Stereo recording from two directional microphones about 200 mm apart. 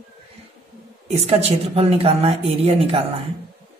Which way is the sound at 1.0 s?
30° right (ahead or behind).